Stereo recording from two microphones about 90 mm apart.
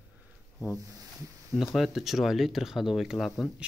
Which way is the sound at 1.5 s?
Centre (ahead or behind).